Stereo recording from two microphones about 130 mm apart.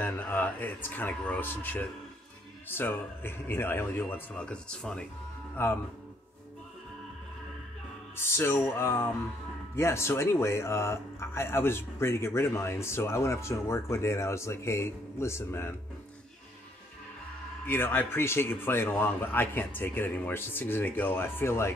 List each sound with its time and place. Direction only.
0.0 s speech: 10° left (ahead or behind)
5.6 s speech: 20° left (ahead or behind)
8.2 s speech: 20° left (ahead or behind)
17.6 s speech: 15° left (ahead or behind)